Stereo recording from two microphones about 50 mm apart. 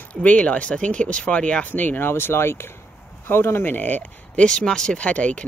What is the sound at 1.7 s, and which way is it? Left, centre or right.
Speech, left.